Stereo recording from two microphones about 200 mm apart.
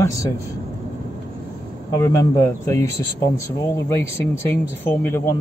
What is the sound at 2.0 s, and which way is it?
Speech, 15° left (ahead or behind).